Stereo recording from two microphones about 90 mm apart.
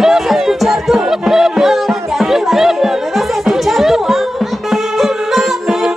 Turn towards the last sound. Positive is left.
turn(degrees=0)  # may be behind; listen again after turning